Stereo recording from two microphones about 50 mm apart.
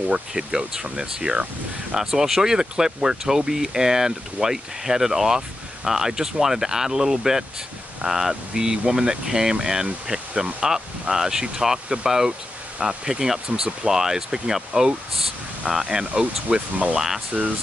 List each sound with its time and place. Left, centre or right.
0.3 s speech: centre